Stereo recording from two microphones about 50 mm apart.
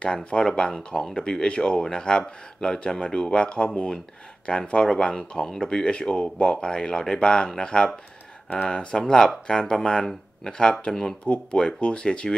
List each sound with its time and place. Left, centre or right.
0.0 s speech: left